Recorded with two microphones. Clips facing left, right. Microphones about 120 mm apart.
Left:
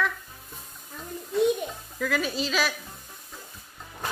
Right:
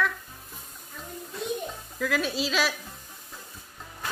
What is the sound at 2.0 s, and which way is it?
Speech, centre (ahead or behind).